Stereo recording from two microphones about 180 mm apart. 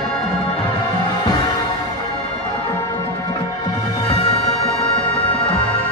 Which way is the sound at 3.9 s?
20° left (ahead or behind).